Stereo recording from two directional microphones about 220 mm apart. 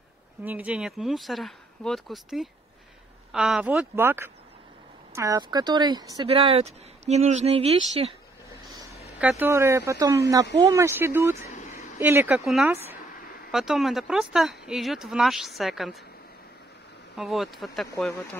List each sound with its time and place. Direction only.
0.4 s speech: 10° right (ahead or behind); by 8.1 s 25° right (ahead or behind)
9.2 s speech: 10° right (ahead or behind)
11.5 s a sound: 35° left (ahead or behind)
12.0 s speech: 10° right (ahead or behind)
17.2 s speech: centre (ahead or behind)